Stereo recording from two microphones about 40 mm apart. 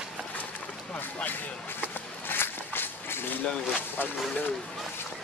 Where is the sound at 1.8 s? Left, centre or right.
Left.